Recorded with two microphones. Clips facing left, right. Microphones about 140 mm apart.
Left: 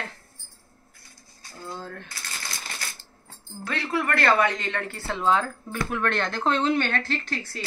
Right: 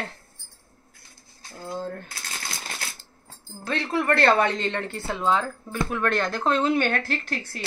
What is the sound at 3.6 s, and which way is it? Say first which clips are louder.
Speech: right 2 dB; 25° right (ahead or behind).